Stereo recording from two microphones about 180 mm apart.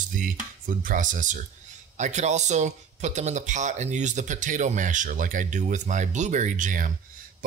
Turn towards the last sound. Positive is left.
turn(degrees=-45)  # may be behind; listen again after turning